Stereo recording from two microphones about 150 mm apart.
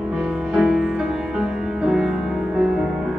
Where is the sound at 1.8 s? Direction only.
5° right (ahead or behind).